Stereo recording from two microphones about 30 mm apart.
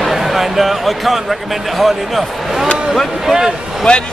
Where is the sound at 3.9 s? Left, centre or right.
Left.